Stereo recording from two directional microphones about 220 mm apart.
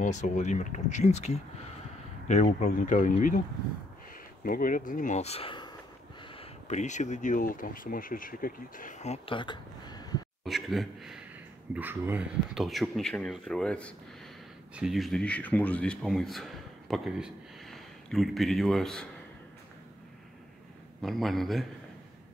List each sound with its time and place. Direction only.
0.0 s speech: 35° left (ahead or behind)
4.5 s speech: 40° left (ahead or behind); by 10.2 s 20° left (ahead or behind)
10.4 s a man's voice: centre (ahead or behind)
21.0 s speech: centre (ahead or behind)